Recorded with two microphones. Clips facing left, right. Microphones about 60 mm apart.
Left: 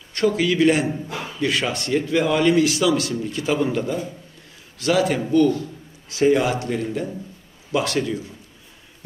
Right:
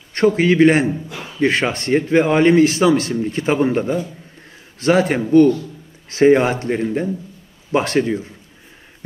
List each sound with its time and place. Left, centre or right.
0.1 s a man's voice: right